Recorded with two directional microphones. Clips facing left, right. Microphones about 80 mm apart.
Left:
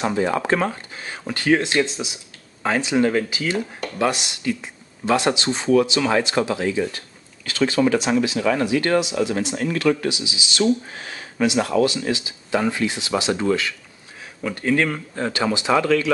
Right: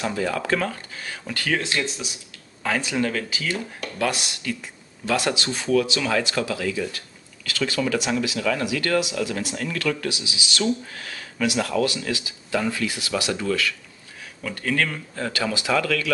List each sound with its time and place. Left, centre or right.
0.0 s speech: left